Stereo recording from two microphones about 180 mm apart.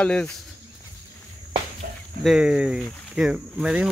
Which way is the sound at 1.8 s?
55° right (ahead or behind).